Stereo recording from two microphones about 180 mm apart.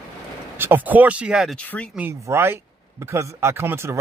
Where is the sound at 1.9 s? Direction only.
15° right (ahead or behind).